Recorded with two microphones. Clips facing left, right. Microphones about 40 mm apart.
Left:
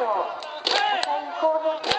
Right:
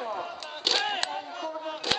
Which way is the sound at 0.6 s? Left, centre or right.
Centre.